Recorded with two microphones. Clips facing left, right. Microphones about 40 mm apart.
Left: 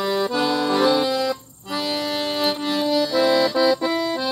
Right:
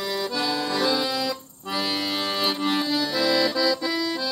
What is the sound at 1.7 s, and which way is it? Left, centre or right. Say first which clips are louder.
Accordion: left 2 dB; centre.